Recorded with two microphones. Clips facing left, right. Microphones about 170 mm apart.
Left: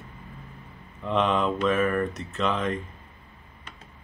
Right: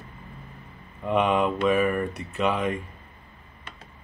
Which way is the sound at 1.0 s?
10° right (ahead or behind).